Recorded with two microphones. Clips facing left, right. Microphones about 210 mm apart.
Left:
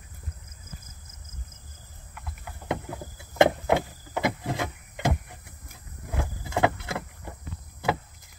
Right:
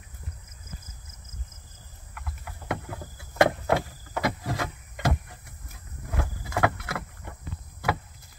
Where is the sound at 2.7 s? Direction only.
20° left (ahead or behind).